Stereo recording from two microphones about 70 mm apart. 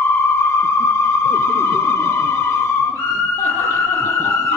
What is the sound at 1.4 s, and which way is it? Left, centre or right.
Music, left.